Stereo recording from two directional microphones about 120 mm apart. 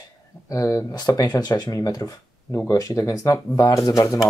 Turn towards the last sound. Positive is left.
turn(degrees=30)  # may be behind; listen again after turning